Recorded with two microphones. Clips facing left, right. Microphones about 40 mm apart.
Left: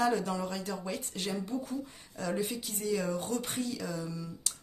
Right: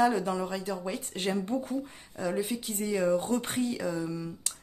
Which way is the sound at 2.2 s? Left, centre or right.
Centre.